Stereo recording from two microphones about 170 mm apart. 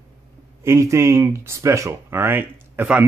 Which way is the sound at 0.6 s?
15° right (ahead or behind).